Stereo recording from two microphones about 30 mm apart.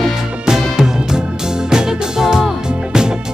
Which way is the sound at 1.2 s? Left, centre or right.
Right.